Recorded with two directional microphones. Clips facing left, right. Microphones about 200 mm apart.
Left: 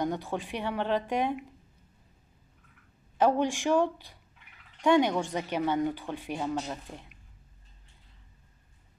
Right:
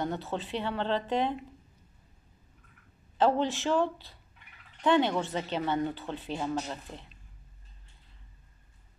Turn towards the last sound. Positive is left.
turn(degrees=15)  # may be behind; listen again after turning